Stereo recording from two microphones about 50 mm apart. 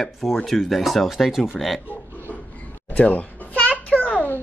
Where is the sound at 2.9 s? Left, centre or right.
Left.